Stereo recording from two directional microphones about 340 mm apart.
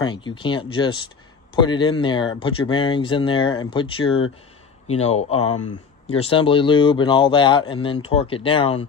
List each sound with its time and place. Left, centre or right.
0.0 s speech: centre